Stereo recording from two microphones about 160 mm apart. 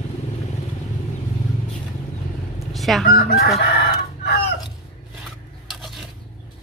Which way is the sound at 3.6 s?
80° left.